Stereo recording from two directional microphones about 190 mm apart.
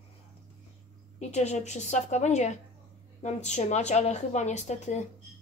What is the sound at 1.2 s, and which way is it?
A woman's voice, 35° left (ahead or behind).